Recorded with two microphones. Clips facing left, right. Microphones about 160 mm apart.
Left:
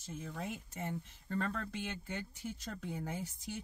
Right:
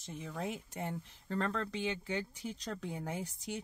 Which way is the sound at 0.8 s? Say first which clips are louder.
Left 1 dB; 80° right.